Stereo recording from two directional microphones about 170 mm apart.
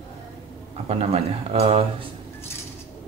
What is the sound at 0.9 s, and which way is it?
Speech, 35° right (ahead or behind).